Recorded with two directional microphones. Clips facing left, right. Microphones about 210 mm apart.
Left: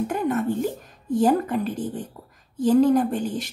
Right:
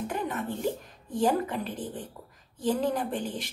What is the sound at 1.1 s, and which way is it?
Speech, 45° left (ahead or behind).